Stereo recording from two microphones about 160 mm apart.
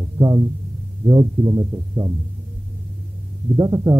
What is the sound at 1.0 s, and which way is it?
Speech, 20° right (ahead or behind).